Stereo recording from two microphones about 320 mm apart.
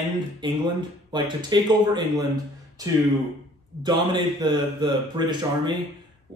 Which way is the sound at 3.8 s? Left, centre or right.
Centre.